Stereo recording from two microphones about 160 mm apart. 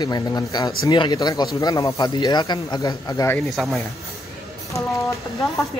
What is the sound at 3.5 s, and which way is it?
Music, centre (ahead or behind).